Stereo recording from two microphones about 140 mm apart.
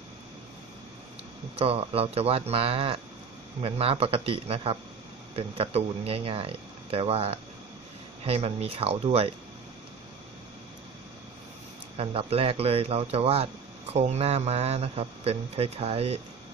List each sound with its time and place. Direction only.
1.6 s speech: 45° right (ahead or behind)
12.0 s speech: 45° right (ahead or behind)